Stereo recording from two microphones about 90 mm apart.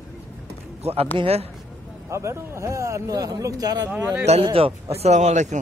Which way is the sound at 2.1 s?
30° right (ahead or behind).